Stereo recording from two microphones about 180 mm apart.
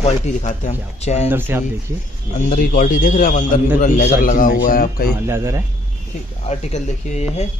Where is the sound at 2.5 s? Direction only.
50° left (ahead or behind).